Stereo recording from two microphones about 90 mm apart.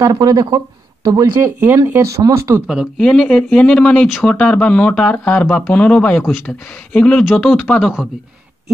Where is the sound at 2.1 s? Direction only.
35° right (ahead or behind).